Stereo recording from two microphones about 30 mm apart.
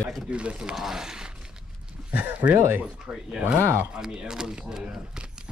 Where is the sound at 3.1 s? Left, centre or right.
Right.